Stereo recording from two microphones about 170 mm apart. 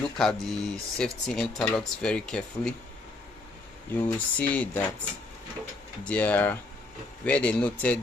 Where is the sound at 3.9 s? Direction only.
10° left (ahead or behind).